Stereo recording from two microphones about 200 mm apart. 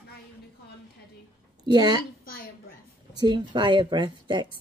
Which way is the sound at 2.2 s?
45° left (ahead or behind).